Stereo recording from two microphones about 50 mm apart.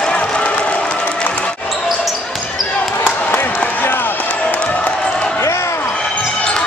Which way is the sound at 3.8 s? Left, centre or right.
Left.